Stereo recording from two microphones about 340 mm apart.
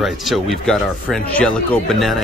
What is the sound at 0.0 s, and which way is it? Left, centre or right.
Speech, centre.